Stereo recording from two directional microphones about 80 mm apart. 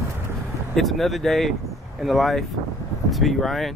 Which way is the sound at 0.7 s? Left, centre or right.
Centre.